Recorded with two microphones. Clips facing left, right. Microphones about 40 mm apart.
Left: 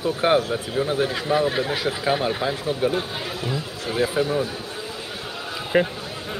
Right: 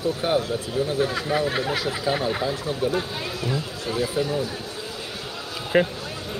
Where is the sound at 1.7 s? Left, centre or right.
Left.